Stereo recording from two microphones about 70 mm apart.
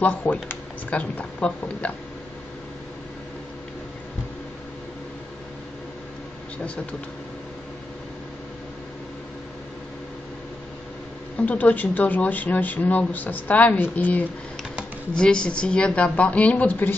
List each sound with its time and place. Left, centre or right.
0.0 s speech: left
6.6 s speech: centre
11.3 s speech: left
15.1 s speech: centre